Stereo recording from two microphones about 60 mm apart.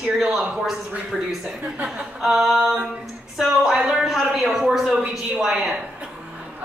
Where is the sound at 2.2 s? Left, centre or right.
Centre.